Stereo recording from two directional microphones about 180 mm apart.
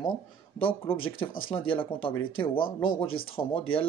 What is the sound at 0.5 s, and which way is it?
Speech, 30° left (ahead or behind).